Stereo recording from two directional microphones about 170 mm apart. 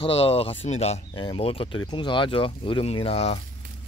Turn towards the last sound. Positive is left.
turn(degrees=35)  # may be behind; listen again after turning